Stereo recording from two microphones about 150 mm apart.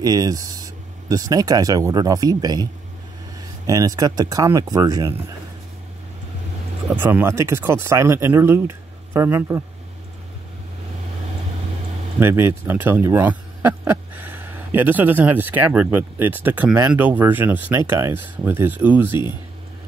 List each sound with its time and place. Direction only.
0.0 s speech: 25° right (ahead or behind)
7.0 s speech: 15° right (ahead or behind)
12.2 s speech: 15° right (ahead or behind)